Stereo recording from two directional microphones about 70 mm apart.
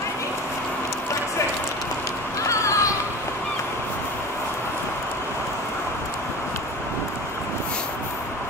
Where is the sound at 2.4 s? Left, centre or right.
Left.